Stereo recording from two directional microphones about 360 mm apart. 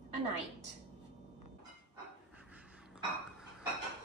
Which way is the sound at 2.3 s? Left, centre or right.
Centre.